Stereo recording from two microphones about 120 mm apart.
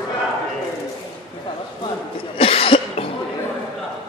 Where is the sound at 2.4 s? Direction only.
50° left (ahead or behind).